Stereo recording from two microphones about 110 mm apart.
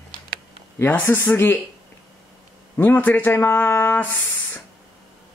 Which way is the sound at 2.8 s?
20° left (ahead or behind).